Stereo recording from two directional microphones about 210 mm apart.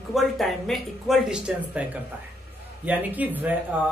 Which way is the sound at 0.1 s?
Centre (ahead or behind).